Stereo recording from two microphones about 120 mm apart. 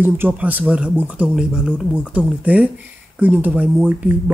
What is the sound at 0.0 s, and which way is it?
Speech, 15° right (ahead or behind).